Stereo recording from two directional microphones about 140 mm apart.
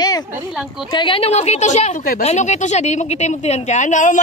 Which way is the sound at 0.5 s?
5° right (ahead or behind).